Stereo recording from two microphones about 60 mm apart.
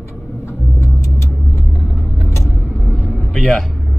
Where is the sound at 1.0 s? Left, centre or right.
Left.